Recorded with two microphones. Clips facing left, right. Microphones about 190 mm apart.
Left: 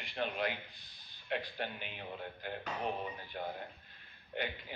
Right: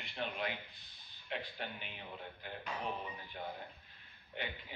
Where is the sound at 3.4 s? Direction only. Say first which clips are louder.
Left 4 dB; 55° left (ahead or behind).